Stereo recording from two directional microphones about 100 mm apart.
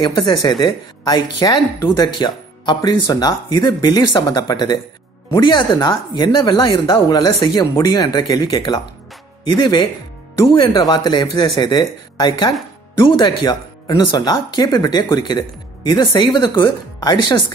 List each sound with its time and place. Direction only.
0.0 s speech: 40° left (ahead or behind)